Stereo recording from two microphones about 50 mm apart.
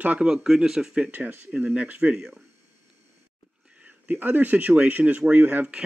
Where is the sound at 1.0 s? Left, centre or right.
Right.